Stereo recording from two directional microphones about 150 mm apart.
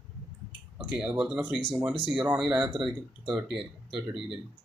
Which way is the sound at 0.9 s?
5° right (ahead or behind).